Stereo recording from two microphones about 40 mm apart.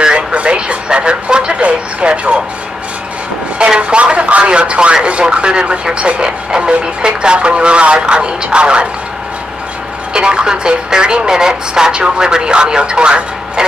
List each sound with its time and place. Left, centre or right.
0.0 s radio: right
3.5 s a sound: right
5.0 s speech: right
10.1 s speech: right